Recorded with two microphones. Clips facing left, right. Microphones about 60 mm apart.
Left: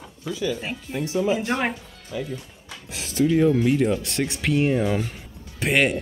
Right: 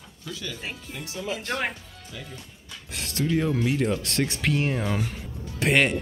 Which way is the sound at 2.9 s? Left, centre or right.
Centre.